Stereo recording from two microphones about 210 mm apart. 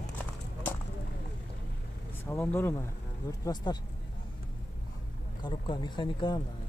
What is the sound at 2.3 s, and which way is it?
Speech, 10° left (ahead or behind).